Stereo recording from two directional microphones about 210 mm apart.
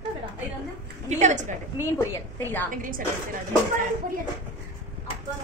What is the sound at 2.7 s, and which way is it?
Speech, 40° right (ahead or behind).